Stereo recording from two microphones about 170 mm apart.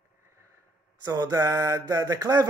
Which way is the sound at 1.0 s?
20° right (ahead or behind).